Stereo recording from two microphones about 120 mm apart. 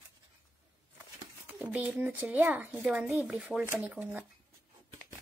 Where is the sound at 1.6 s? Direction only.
10° right (ahead or behind).